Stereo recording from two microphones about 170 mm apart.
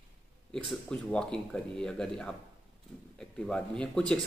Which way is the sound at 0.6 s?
5° left (ahead or behind).